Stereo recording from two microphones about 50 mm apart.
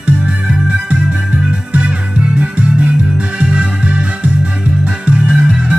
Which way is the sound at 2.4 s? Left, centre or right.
Right.